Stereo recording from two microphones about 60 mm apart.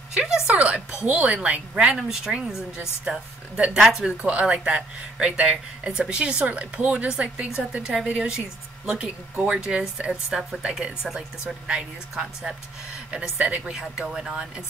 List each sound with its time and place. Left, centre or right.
0.1 s speech: centre
2.0 s speech: centre
4.2 s speech: centre
13.7 s speech: centre